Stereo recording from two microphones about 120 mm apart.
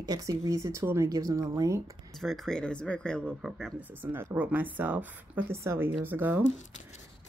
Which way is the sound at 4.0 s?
20° right (ahead or behind).